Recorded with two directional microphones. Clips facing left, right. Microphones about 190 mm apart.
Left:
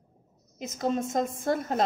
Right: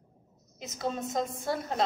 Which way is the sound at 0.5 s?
45° left (ahead or behind).